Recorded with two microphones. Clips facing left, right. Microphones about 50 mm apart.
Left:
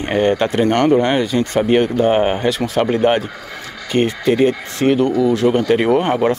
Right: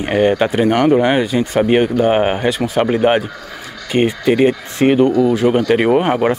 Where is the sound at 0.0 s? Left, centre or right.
Centre.